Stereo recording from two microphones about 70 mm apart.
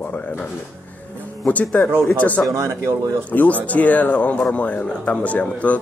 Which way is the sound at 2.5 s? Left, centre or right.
Right.